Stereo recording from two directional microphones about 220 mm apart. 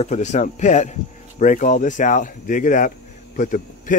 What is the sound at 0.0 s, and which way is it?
Speech, 30° left (ahead or behind).